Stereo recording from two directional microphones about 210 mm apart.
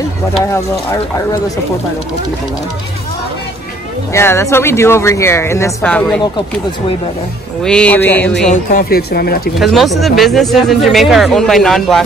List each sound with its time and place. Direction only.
4.1 s speech: 10° left (ahead or behind)
7.6 s speech: 5° left (ahead or behind)
8.5 s speech: 45° left (ahead or behind)
9.6 s speech: centre (ahead or behind)